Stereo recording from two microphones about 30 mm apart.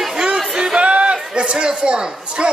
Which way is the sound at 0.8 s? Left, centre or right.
Right.